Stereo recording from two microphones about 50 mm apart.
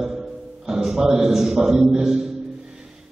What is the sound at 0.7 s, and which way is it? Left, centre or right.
A man's voice, centre.